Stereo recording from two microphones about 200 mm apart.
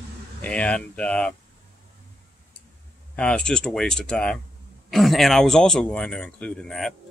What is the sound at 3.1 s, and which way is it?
Speech, 5° left (ahead or behind).